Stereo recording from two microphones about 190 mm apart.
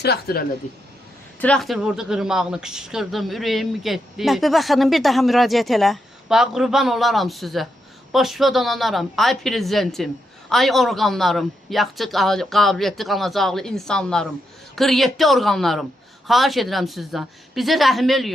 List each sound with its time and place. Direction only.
0.0 s speech: 55° left (ahead or behind)
1.4 s speech: 5° left (ahead or behind)